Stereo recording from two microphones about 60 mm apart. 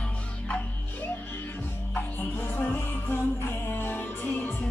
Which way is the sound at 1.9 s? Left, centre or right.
Left.